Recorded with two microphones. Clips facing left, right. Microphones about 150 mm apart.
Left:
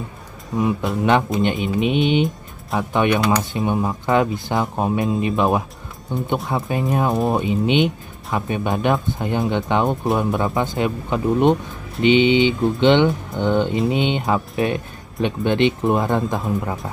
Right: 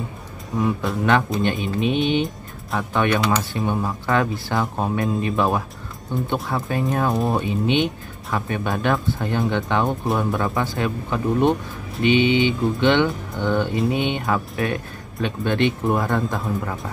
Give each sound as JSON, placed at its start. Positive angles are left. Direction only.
{"t": 0.6, "sound": "speech", "side_deg": 20}